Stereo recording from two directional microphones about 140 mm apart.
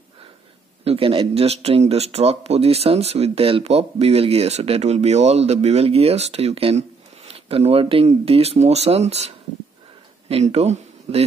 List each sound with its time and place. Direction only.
0.8 s speech: 40° right (ahead or behind)